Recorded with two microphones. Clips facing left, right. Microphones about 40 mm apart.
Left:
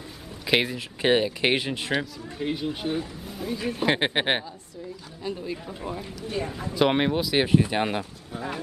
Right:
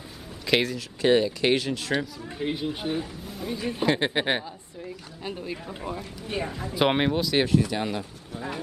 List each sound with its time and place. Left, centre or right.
0.5 s speech: centre
2.3 s speech: centre
3.8 s speech: left
5.2 s speech: right
6.7 s speech: centre
7.1 s speech: centre
7.4 s speech: left